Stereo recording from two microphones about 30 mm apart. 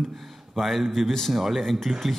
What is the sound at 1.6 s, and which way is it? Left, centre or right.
Speech, centre.